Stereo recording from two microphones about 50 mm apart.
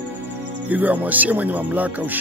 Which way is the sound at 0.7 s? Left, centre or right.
Right.